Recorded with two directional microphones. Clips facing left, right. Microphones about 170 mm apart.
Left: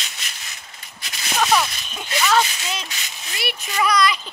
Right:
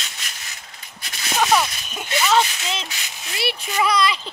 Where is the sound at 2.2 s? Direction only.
25° right (ahead or behind).